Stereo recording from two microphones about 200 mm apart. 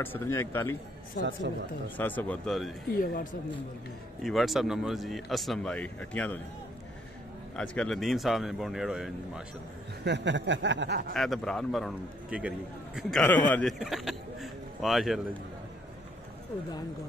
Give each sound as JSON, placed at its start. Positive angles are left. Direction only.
{"t": 0.0, "sound": "speech", "side_deg": 10}
{"t": 1.2, "sound": "speech", "side_deg": 45}
{"t": 2.0, "sound": "speech", "side_deg": 10}
{"t": 2.9, "sound": "speech", "side_deg": 45}
{"t": 4.2, "sound": "speech", "side_deg": 0}
{"t": 7.5, "sound": "speech", "side_deg": 5}
{"t": 10.0, "sound": "speech", "side_deg": -60}
{"t": 11.1, "sound": "speech", "side_deg": 0}
{"t": 13.2, "sound": "speech", "side_deg": 10}